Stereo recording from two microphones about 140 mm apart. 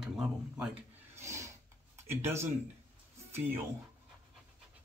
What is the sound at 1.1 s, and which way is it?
Filing, 20° right (ahead or behind).